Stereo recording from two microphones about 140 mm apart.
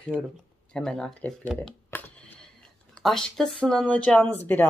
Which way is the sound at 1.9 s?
15° left (ahead or behind).